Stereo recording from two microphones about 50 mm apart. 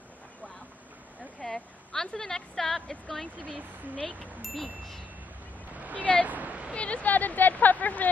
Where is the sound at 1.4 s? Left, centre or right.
Centre.